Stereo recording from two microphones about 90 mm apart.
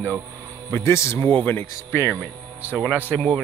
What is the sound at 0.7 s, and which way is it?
Speech, 30° left (ahead or behind).